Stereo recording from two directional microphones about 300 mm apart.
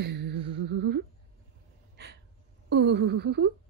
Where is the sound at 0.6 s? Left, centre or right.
Right.